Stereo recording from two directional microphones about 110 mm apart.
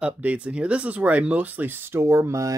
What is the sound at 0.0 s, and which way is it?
Speech, 10° right (ahead or behind).